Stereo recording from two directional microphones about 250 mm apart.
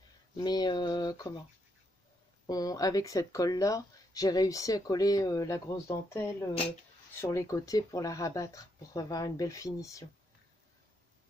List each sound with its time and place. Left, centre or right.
0.4 s speech: centre
2.4 s speech: centre